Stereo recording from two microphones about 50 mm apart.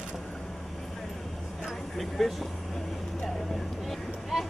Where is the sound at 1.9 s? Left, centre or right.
Centre.